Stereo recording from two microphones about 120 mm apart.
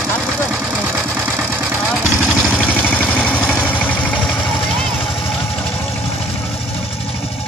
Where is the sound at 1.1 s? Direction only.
15° right (ahead or behind).